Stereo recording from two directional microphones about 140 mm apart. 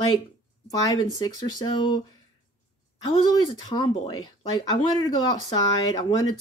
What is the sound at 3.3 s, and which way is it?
Speech, 30° left (ahead or behind).